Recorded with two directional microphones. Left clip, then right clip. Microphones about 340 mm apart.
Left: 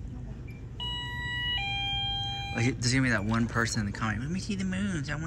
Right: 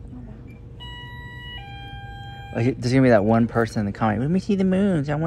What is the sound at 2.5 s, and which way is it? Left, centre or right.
Speech, centre.